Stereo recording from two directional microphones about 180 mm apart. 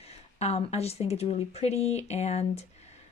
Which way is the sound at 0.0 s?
35° left (ahead or behind).